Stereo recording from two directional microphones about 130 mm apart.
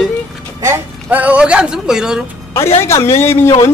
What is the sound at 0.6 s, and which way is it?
Speech, 15° right (ahead or behind).